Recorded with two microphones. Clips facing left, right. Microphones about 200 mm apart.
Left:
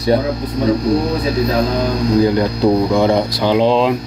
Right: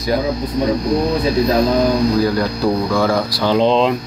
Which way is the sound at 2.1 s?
20° left (ahead or behind).